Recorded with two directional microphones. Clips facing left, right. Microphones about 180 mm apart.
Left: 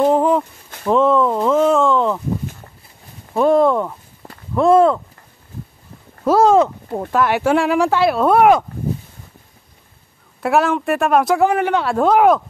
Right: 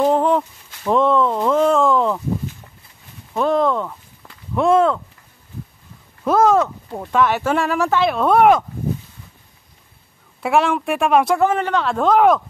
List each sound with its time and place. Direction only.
0.0 s speech: 5° left (ahead or behind)
3.3 s speech: 10° left (ahead or behind)
4.2 s a sound: 40° left (ahead or behind)
4.6 s speech: 5° left (ahead or behind)
6.2 s speech: 10° left (ahead or behind)
10.4 s speech: centre (ahead or behind)
11.4 s speech: 15° left (ahead or behind)